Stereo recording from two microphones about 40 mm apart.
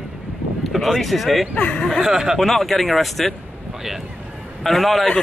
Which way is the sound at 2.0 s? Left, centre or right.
Centre.